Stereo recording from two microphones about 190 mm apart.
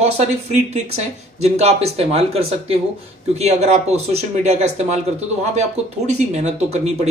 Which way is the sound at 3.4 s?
35° right (ahead or behind).